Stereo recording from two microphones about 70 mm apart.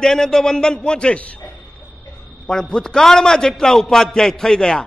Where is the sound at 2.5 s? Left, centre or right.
Centre.